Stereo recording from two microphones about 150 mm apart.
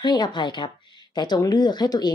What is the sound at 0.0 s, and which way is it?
Speech, 30° left (ahead or behind).